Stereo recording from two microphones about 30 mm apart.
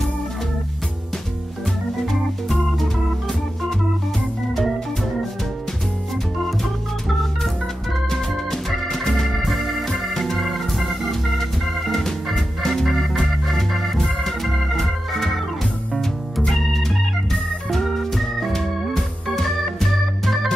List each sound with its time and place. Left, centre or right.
2.0 s organ: centre
6.6 s organ: centre
9.0 s organ: centre
9.4 s organ: centre
9.8 s organ: centre
13.9 s organ: centre
14.4 s organ: centre
15.9 s music: centre
16.5 s organ: centre